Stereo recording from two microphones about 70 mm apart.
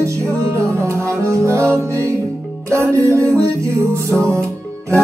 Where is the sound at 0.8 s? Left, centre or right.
Right.